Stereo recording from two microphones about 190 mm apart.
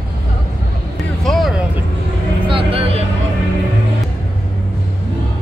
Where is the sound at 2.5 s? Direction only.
30° right (ahead or behind).